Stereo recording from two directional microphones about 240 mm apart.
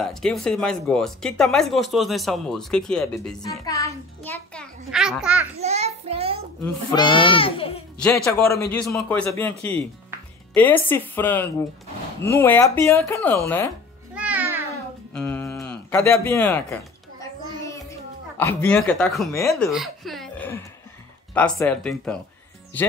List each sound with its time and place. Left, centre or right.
0.0 s speech: centre
3.6 s a child's voice: centre
5.6 s child singing: right
6.6 s speech: centre
8.0 s speech: centre
14.1 s music: centre
15.1 s a sound: centre
18.4 s speech: centre